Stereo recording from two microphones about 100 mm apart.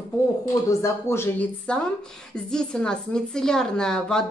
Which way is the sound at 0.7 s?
30° left (ahead or behind).